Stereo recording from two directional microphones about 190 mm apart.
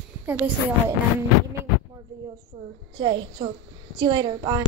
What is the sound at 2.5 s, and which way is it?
Speech, 25° right (ahead or behind).